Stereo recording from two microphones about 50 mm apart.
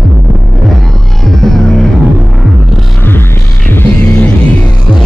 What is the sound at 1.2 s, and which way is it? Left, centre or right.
Music, centre.